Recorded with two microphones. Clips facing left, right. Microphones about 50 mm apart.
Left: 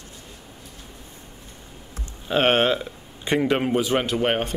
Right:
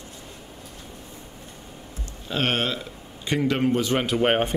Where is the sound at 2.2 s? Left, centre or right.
Left.